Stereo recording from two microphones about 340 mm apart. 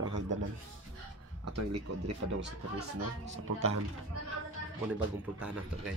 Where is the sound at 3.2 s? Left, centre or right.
Right.